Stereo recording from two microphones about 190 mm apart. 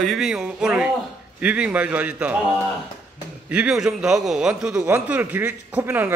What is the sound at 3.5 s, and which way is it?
A man's voice, 5° right (ahead or behind).